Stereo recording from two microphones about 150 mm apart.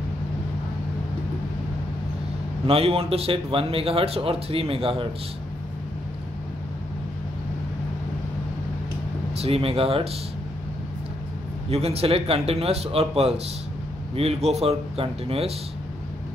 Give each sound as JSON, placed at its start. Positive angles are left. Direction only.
{"t": 2.6, "sound": "a man's voice", "side_deg": -40}
{"t": 9.4, "sound": "a man's voice", "side_deg": -40}
{"t": 11.7, "sound": "a man's voice", "side_deg": -45}